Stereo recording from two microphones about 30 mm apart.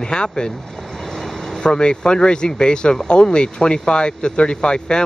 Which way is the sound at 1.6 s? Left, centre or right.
Left.